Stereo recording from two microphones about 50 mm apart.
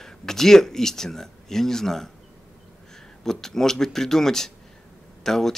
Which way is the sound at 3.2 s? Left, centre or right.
Centre.